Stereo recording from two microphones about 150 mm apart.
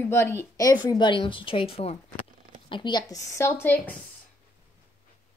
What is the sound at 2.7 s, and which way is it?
A woman's voice, 30° left (ahead or behind).